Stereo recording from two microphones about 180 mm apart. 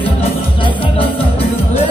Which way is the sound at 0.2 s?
30° left (ahead or behind).